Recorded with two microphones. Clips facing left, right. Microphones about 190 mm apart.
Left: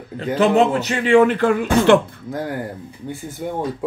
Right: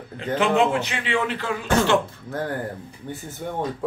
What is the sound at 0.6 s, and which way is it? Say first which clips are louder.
Speech: left 4 dB; 40° left (ahead or behind).